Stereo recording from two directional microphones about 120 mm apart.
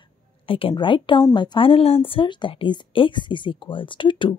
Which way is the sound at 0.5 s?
50° left (ahead or behind).